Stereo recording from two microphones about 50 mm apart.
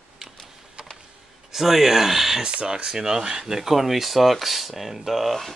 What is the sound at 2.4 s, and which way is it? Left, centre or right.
Speech, centre.